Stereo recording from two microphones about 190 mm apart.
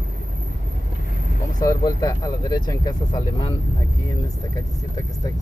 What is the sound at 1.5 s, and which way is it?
Speech, 20° left (ahead or behind).